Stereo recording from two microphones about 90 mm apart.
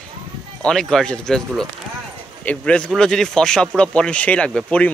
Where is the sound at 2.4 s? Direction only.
15° left (ahead or behind).